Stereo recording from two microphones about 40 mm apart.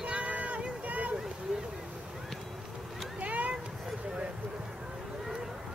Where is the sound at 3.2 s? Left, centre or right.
Right.